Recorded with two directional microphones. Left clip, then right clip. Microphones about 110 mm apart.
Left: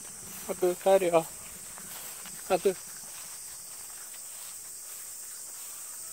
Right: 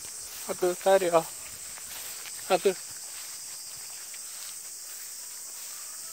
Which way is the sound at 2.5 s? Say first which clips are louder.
Right 2 dB; 25° right (ahead or behind).